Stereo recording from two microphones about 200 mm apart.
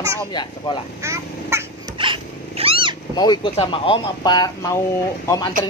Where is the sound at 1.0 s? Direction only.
15° right (ahead or behind).